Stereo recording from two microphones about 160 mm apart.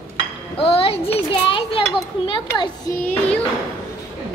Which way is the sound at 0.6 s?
35° left (ahead or behind).